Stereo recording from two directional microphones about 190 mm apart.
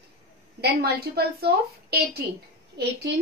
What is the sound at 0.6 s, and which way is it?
A woman's voice, 55° right (ahead or behind).